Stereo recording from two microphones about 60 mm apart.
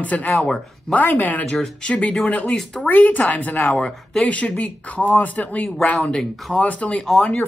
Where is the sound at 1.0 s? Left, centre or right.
Left.